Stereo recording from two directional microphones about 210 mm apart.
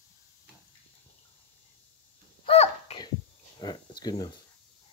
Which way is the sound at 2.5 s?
30° left (ahead or behind).